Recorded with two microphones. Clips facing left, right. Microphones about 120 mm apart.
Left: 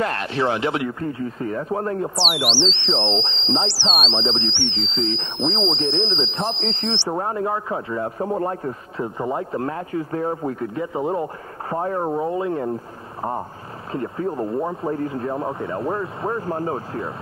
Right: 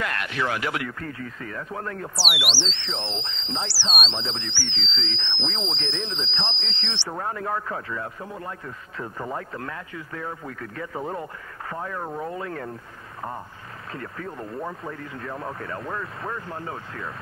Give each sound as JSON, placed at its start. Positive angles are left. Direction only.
{"t": 0.0, "sound": "speech", "side_deg": 30}
{"t": 2.2, "sound": "speech", "side_deg": 40}
{"t": 2.5, "sound": "speech", "side_deg": 25}
{"t": 6.6, "sound": "speech", "side_deg": 40}
{"t": 9.0, "sound": "speech", "side_deg": 20}
{"t": 11.7, "sound": "speech", "side_deg": 35}
{"t": 13.9, "sound": "speech", "side_deg": 25}